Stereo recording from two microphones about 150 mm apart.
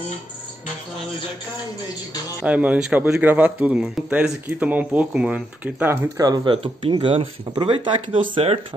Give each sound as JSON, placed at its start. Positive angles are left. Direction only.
{"t": 2.4, "sound": "a man's voice", "side_deg": -10}
{"t": 6.1, "sound": "speech", "side_deg": -25}